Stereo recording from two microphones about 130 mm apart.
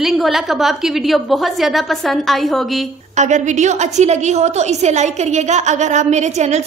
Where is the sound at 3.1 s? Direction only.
65° right (ahead or behind).